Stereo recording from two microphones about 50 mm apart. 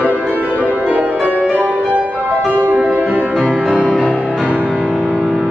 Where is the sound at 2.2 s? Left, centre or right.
Right.